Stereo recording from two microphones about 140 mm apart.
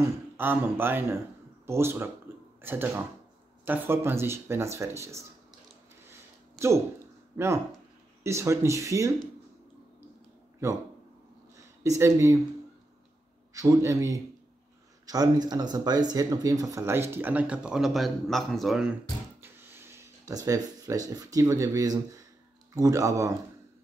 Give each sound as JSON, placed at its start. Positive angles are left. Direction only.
{"t": 0.4, "sound": "speech", "side_deg": -15}
{"t": 2.3, "sound": "a sound", "side_deg": -15}
{"t": 2.6, "sound": "speech", "side_deg": -15}
{"t": 7.3, "sound": "speech", "side_deg": -20}
{"t": 10.6, "sound": "speech", "side_deg": -20}
{"t": 12.0, "sound": "speech", "side_deg": -20}
{"t": 13.5, "sound": "speech", "side_deg": -25}
{"t": 19.4, "sound": "speech", "side_deg": -15}